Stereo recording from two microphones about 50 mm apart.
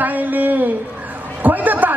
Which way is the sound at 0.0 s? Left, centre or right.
Right.